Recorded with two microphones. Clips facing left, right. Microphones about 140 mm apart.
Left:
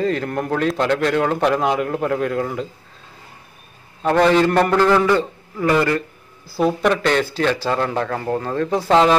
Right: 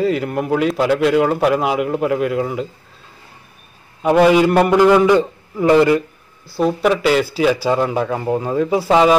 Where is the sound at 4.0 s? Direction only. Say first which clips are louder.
Right 3 dB; 10° right (ahead or behind).